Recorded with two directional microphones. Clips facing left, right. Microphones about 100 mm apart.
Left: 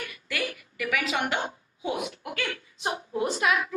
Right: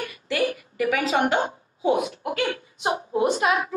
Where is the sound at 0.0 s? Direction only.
35° right (ahead or behind).